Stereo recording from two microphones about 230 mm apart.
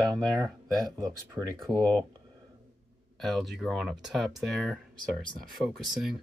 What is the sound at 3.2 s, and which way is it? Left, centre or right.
Speech, centre.